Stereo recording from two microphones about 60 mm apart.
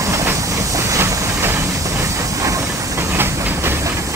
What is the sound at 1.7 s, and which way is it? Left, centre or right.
Train, right.